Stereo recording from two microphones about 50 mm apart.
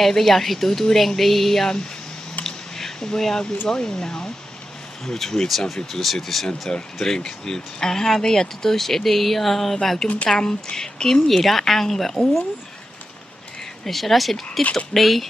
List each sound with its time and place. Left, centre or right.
0.0 s a woman's voice: centre
2.4 s a sound: centre
3.6 s speech: centre
6.7 s speech: centre
10.0 s a woman's voice: left
10.3 s speech: centre
13.8 s a woman's voice: centre
14.6 s a woman's voice: left
15.0 s a woman's voice: centre